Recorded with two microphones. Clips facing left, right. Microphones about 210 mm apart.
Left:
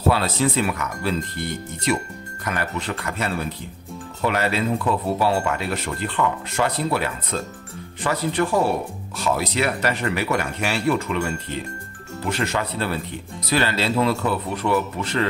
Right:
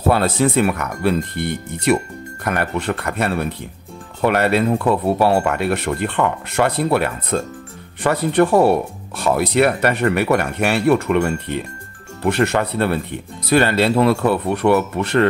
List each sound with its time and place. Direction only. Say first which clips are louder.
0.1 s speech: right 5 dB; 55° right (ahead or behind)